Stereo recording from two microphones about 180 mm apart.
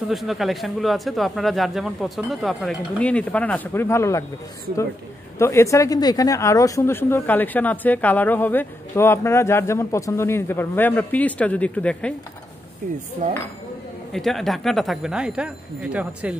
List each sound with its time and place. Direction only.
0.1 s a man's voice: centre (ahead or behind); by 4.2 s 15° left (ahead or behind)
5.4 s speech: 15° left (ahead or behind)
12.8 s dishes: 45° right (ahead or behind)
14.1 s a man's voice: centre (ahead or behind)